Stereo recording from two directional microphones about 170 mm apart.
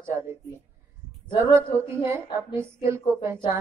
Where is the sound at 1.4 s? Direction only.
15° right (ahead or behind).